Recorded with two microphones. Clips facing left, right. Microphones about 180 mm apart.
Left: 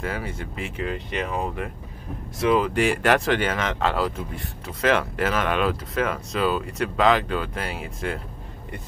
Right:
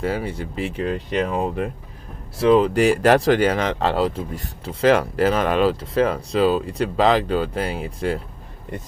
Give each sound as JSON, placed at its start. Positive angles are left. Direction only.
{"t": 0.0, "sound": "speech", "side_deg": -35}